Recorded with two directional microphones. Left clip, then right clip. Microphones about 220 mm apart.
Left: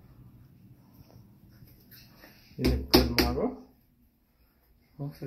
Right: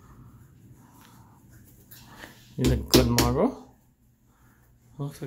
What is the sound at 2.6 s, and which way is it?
Finger snapping, 25° right (ahead or behind).